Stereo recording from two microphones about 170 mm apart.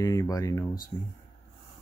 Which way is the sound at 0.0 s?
20° left (ahead or behind).